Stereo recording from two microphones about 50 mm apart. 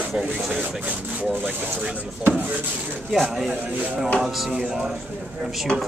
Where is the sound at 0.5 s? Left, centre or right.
Right.